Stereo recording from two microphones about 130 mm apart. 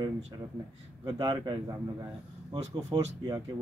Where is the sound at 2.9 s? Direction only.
25° right (ahead or behind).